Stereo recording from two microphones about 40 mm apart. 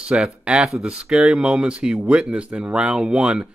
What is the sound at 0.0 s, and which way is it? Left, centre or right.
Speech, right.